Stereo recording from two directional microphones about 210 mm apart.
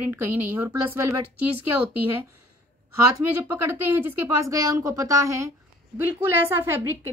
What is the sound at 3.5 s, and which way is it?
Speech, 10° right (ahead or behind).